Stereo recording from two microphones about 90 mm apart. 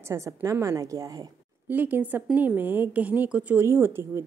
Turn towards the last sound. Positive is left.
turn(degrees=-25)  # may be behind; listen again after turning